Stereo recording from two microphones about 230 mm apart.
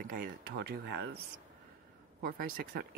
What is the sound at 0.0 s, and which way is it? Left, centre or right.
Speech, right.